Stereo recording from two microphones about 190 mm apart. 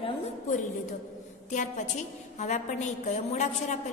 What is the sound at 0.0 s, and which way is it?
A woman's voice, 30° left (ahead or behind).